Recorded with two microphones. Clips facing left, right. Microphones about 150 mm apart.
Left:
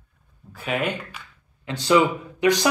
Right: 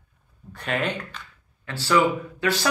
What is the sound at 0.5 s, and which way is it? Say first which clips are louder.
A man's voice: left 1 dB; 5° left (ahead or behind).